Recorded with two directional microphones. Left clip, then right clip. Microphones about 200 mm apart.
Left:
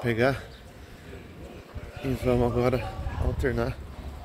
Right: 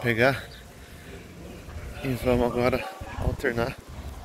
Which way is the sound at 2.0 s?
Centre (ahead or behind).